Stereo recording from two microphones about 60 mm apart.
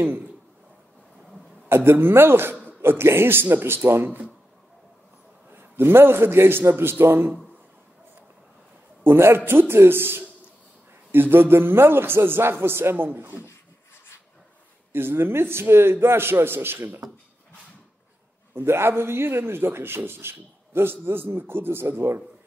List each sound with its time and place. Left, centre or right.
1.7 s a man's voice: right
5.5 s a man's voice: right
9.0 s a man's voice: right
14.9 s a man's voice: right
18.5 s a man's voice: right